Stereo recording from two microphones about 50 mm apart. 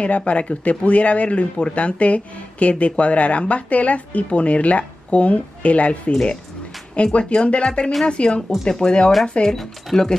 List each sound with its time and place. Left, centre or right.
0.0 s speech: left